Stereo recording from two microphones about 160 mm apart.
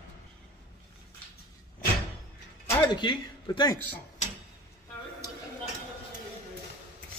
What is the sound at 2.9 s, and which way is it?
Speech, 30° left (ahead or behind).